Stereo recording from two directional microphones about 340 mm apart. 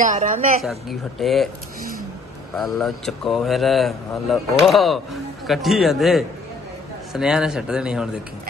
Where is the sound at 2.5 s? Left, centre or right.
Centre.